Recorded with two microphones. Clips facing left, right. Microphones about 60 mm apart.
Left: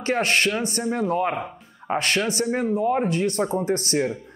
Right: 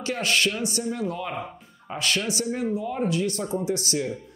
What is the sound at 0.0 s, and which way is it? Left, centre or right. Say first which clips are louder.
A man's voice: left 3 dB; left.